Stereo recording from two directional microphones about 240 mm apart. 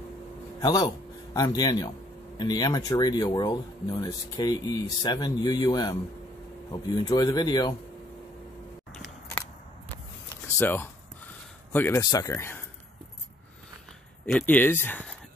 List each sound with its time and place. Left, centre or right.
0.6 s a man's voice: centre
8.9 s scissors: centre
10.4 s a sound: centre
11.7 s speech: centre
14.2 s speech: centre